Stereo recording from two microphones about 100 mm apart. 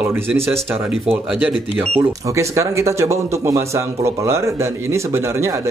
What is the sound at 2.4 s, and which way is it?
Speech, 30° right (ahead or behind).